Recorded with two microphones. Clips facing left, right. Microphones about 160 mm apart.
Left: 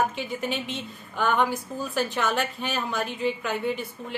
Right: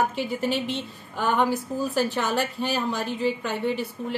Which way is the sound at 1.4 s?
35° right (ahead or behind).